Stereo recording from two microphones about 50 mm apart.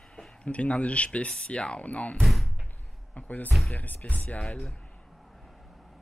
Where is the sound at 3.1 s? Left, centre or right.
Left.